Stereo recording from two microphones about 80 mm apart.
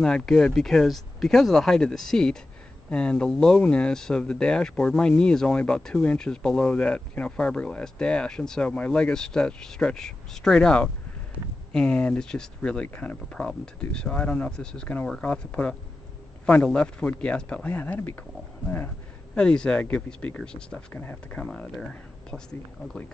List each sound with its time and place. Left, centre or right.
0.0 s speech: centre
17.6 s speech: left
19.3 s speech: centre
20.9 s speech: left
21.7 s speech: centre